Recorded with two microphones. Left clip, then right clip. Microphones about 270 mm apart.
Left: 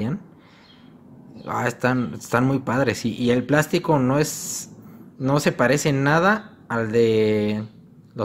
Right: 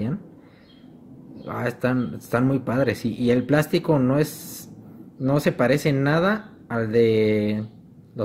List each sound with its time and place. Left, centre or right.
1.4 s speech: centre